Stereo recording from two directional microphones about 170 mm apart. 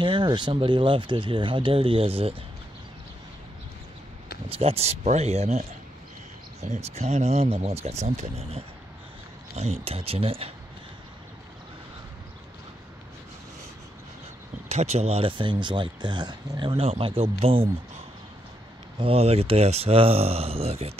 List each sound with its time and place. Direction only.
0.0 s speech: 25° right (ahead or behind)
4.5 s speech: 35° right (ahead or behind)
9.8 s speech: 35° right (ahead or behind)
14.7 s speech: 40° right (ahead or behind)
18.9 s speech: 35° right (ahead or behind)